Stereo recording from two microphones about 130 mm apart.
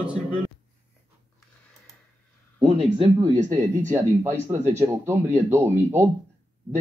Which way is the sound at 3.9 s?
20° right (ahead or behind).